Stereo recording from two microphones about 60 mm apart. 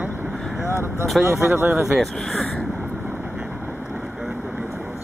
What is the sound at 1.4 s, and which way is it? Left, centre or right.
Speech, right.